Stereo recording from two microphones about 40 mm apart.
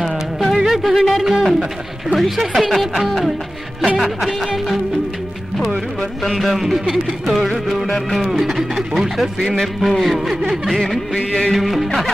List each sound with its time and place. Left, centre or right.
0.0 s music: centre
0.7 s speech: centre
6.2 s speech: centre
11.1 s music of bollywood: left
11.5 s speech: centre